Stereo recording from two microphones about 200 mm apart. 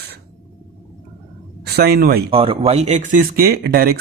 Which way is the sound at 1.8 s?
50° right (ahead or behind).